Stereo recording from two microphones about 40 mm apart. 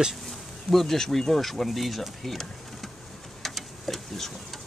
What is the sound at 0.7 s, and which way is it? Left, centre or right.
Speech, centre.